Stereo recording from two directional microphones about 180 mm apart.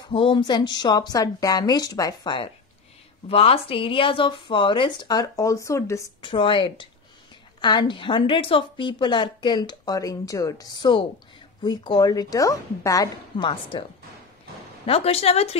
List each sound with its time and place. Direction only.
0.1 s a woman's voice: 30° left (ahead or behind)
6.2 s a woman's voice: 30° left (ahead or behind)
14.9 s a woman's voice: 35° left (ahead or behind)